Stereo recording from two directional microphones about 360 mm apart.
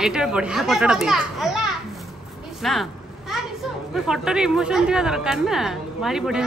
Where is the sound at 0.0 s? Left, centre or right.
Centre.